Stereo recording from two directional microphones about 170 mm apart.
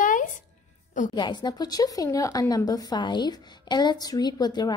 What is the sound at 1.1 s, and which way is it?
Speech, 25° left (ahead or behind).